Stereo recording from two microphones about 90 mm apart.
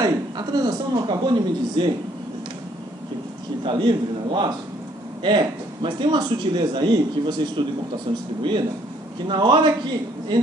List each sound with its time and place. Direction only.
0.0 s a man's voice: 50° right (ahead or behind)
3.6 s speech: 65° right (ahead or behind)